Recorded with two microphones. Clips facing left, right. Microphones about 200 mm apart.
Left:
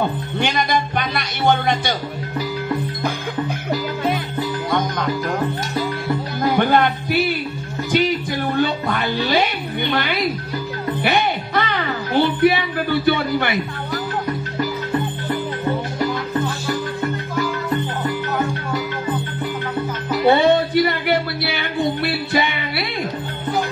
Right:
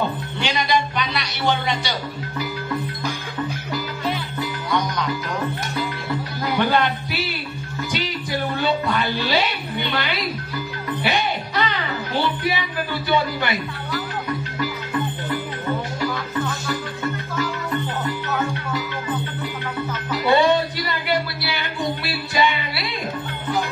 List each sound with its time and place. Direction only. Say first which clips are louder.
0.4 s music: left 2 dB; 50° left (ahead or behind)
4.6 s music: even; 50° left (ahead or behind)
6.5 s music: left 2 dB; 50° left (ahead or behind)
8.5 s music: left 1 dB; 50° left (ahead or behind)
16.4 s music: left 4 dB; 35° left (ahead or behind)
20.2 s music: left 3 dB; 55° left (ahead or behind)